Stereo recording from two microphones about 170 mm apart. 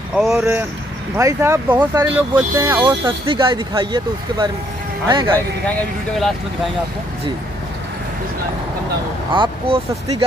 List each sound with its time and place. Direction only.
0.1 s speech: centre (ahead or behind)
1.1 s speech: 20° right (ahead or behind)
3.3 s speech: 30° right (ahead or behind)
5.7 s speech: 5° left (ahead or behind)
9.3 s speech: 30° right (ahead or behind)